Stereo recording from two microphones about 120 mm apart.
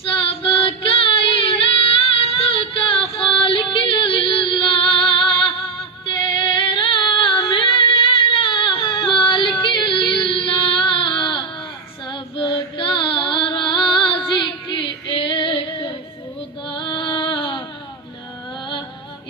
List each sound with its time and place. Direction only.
0.0 s female singing: 50° left (ahead or behind)
3.1 s music: 50° left (ahead or behind)
6.4 s female singing: 45° left (ahead or behind)
12.1 s music: 45° left (ahead or behind)